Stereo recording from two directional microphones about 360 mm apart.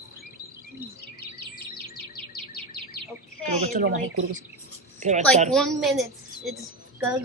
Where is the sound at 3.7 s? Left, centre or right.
Right.